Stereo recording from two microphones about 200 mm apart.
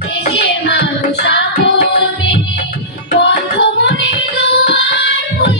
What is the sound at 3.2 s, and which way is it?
Music, 60° left (ahead or behind).